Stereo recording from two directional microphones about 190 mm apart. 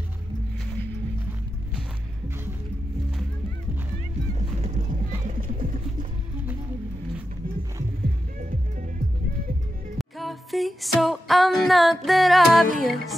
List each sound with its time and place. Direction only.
1.8 s music: 10° right (ahead or behind)
4.4 s vehicle: 35° right (ahead or behind)
9.9 s music: centre (ahead or behind)